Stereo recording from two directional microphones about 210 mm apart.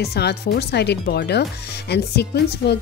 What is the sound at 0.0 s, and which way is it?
Speech, 50° left (ahead or behind).